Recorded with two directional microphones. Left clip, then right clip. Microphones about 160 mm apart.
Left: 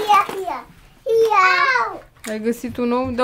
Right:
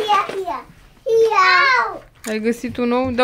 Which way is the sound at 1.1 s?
10° left (ahead or behind).